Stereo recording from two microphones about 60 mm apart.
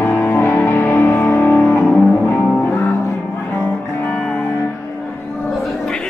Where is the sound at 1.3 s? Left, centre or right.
Left.